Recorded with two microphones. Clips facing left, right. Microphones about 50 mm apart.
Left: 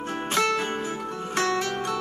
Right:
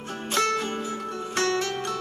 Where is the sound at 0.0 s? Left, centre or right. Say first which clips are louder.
Left 1 dB; left.